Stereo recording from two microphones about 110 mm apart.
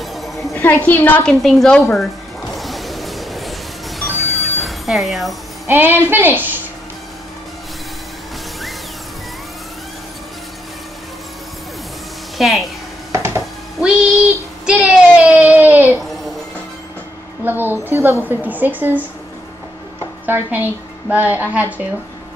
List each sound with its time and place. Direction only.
0.0 s music: centre (ahead or behind)
0.5 s a woman's voice: 15° left (ahead or behind)
1.4 s speech: 5° left (ahead or behind)
2.5 s a sound: centre (ahead or behind)
4.0 s music: centre (ahead or behind)
5.7 s a woman's voice: 20° right (ahead or behind)
12.4 s a woman's voice: centre (ahead or behind)
13.1 s a sound: 25° right (ahead or behind)
13.7 s a sound: 5° right (ahead or behind)
17.5 s a woman's voice: 20° right (ahead or behind)
20.2 s a woman's voice: 20° right (ahead or behind)